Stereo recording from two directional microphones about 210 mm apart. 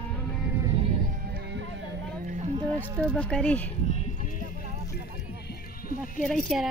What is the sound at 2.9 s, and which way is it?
Speech, 5° left (ahead or behind).